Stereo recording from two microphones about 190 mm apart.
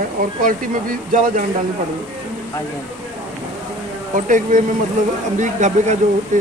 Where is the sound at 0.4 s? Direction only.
45° right (ahead or behind).